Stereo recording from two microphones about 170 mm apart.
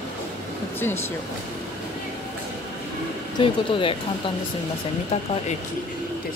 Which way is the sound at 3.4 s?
30° left (ahead or behind).